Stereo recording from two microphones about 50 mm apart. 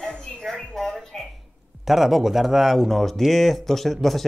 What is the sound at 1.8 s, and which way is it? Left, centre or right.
Speech, centre.